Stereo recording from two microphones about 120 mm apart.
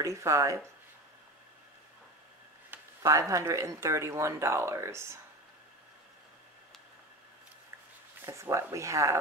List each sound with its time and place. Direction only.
0.0 s speech: 25° right (ahead or behind)
2.7 s speech: 25° right (ahead or behind)
8.3 s speech: 25° right (ahead or behind)